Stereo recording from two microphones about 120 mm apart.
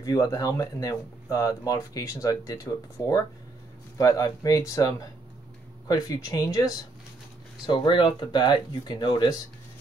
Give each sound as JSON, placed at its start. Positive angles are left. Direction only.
{"t": 0.0, "sound": "speech", "side_deg": 30}